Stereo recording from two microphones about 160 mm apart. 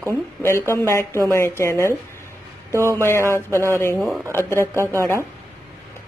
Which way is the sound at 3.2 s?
15° left (ahead or behind).